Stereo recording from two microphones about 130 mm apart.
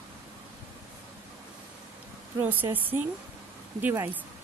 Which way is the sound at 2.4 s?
15° right (ahead or behind).